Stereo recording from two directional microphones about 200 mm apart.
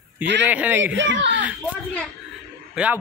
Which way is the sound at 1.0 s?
65° right (ahead or behind).